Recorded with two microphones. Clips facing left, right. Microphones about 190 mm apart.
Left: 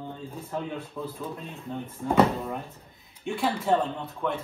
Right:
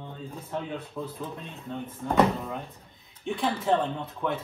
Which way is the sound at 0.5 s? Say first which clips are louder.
Left 1 dB; centre (ahead or behind).